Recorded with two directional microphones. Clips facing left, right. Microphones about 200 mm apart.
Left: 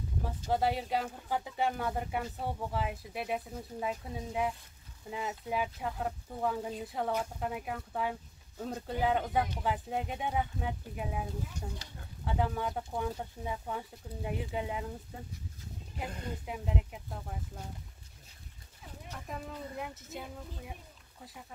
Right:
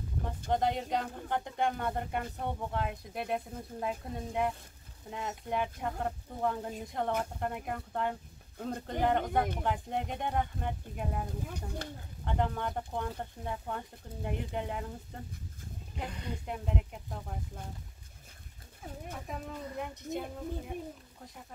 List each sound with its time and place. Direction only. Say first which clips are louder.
0.5 s speech: even; 5° left (ahead or behind)
11.4 s speech: right 3 dB; 55° right (ahead or behind)
12.3 s speech: even; 5° left (ahead or behind)
16.1 s speech: left 1 dB; 45° left (ahead or behind)
16.4 s speech: right 1 dB; 5° left (ahead or behind)
19.1 s speech: left 1 dB; centre (ahead or behind)